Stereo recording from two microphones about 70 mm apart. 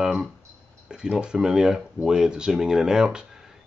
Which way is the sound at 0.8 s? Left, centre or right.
Centre.